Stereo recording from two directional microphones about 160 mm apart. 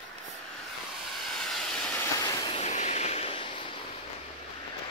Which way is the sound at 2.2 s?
25° left (ahead or behind).